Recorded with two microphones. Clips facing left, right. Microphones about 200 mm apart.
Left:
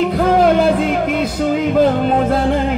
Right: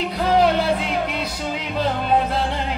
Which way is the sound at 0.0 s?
50° left (ahead or behind).